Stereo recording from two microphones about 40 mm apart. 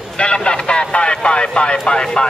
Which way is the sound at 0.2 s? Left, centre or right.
Left.